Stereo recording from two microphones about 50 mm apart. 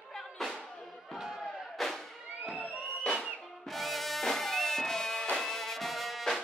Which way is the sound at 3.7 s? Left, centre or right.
Centre.